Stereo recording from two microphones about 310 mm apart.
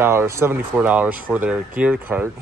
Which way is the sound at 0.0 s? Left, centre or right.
Centre.